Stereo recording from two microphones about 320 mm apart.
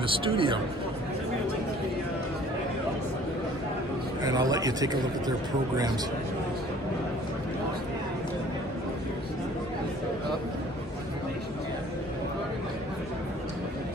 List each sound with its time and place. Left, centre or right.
0.0 s a man's voice: centre
4.2 s a man's voice: centre